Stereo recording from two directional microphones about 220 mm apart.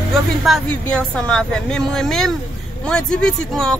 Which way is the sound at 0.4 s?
Centre (ahead or behind).